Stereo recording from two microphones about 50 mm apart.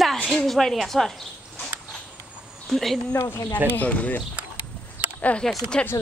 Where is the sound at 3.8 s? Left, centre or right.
Left.